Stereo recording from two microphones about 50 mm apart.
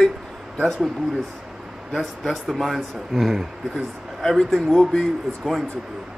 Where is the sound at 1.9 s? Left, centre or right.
Centre.